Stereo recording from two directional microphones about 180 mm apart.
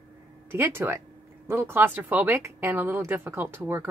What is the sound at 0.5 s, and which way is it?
A woman's voice, 10° right (ahead or behind).